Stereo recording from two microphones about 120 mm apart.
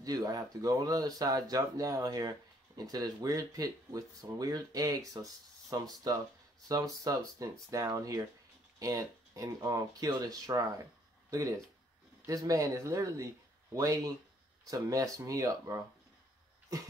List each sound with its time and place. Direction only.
0.0 s speech: 30° right (ahead or behind)